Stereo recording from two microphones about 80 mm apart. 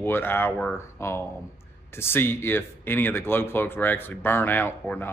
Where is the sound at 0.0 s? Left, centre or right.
Left.